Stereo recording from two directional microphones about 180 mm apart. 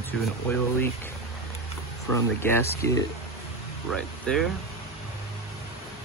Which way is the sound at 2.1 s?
15° left (ahead or behind).